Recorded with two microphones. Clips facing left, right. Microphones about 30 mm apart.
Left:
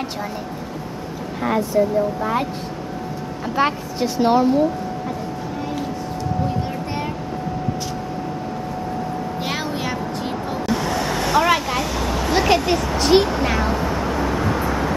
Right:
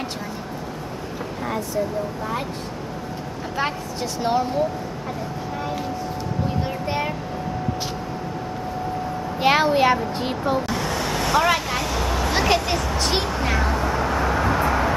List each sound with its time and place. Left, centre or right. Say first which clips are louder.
3.5 s a woman's voice: left 6 dB; centre
9.4 s a woman's voice: right 11 dB; right
10.7 s vehicle: left 3 dB; centre